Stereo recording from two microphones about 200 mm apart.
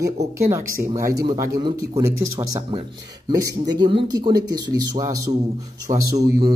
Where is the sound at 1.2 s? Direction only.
20° right (ahead or behind).